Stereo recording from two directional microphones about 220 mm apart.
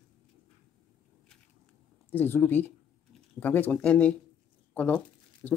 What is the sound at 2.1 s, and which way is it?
Speech, 10° left (ahead or behind).